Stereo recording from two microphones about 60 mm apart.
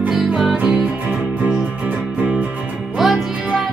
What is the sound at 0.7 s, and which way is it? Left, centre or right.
Music, right.